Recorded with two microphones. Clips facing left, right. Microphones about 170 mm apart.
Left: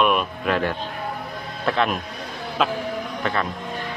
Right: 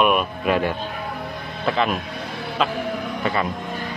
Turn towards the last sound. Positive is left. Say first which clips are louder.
# right 2 dB
turn(degrees=-5)  # may be behind; listen again after turning